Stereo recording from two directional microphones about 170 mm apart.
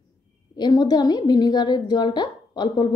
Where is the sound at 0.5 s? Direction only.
25° left (ahead or behind).